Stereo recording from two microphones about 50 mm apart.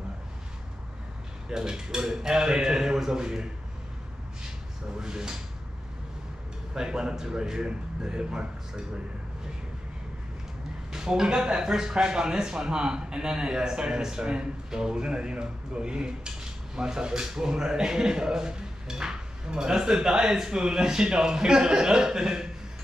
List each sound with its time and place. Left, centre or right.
1.5 s a man's voice: centre
4.9 s a man's voice: centre
6.7 s a man's voice: centre
10.9 s a man's voice: centre